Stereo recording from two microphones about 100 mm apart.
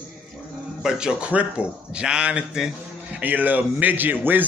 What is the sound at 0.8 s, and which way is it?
Speech, 10° right (ahead or behind).